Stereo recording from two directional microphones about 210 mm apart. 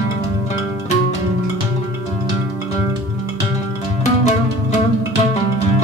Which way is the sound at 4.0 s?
35° left (ahead or behind).